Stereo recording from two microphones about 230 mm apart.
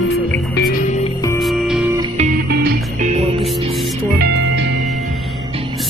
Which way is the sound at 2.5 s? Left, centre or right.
Right.